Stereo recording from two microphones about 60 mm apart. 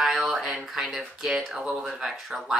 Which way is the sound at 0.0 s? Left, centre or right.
Centre.